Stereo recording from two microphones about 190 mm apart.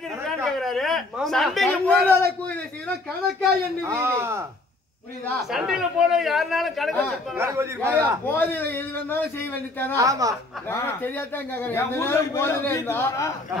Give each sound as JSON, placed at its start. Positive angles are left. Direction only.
{"t": 0.3, "sound": "a man's voice", "side_deg": 0}
{"t": 3.8, "sound": "a man's voice", "side_deg": -15}
{"t": 5.5, "sound": "a man's voice", "side_deg": 0}
{"t": 7.3, "sound": "a man's voice", "side_deg": -15}
{"t": 8.3, "sound": "a man's voice", "side_deg": 10}
{"t": 9.9, "sound": "a man's voice", "side_deg": -20}
{"t": 10.7, "sound": "a man's voice", "side_deg": 10}